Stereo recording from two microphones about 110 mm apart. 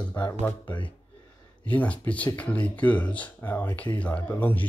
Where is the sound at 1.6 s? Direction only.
15° left (ahead or behind).